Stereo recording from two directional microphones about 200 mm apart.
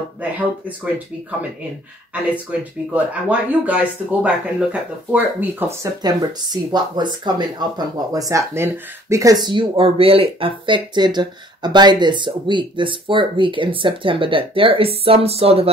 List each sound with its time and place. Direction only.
0.2 s speech: 5° right (ahead or behind)
2.9 s speech: 5° right (ahead or behind); by 15.7 s 30° right (ahead or behind)